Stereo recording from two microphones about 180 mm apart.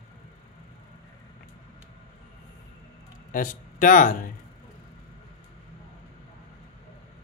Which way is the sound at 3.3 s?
50° left (ahead or behind).